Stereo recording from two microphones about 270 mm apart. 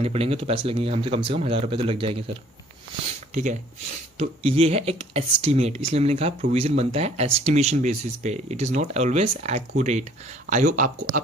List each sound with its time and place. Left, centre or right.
0.0 s speech: right
4.2 s speech: right